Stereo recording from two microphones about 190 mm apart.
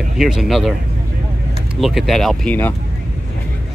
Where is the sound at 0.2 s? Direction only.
Centre (ahead or behind).